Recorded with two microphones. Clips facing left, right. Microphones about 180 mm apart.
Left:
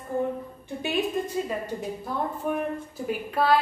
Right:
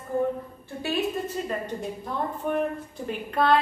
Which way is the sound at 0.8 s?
15° left (ahead or behind).